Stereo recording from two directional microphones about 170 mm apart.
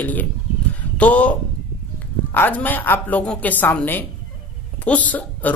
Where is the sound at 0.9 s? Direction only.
10° left (ahead or behind).